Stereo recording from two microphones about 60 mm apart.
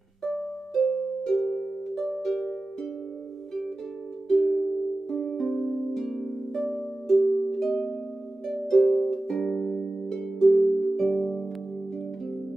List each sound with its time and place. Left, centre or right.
0.2 s harp: centre
4.3 s music: centre
5.2 s harp: centre